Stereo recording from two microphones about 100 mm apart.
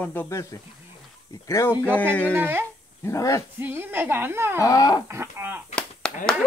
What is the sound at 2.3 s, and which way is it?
Speech, 25° right (ahead or behind).